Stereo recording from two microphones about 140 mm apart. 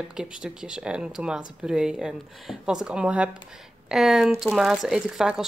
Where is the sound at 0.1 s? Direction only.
5° right (ahead or behind).